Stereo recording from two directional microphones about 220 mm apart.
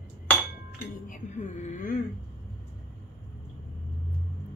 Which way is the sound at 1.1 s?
35° left (ahead or behind).